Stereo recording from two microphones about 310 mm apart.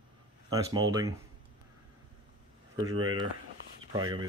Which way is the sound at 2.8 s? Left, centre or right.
Right.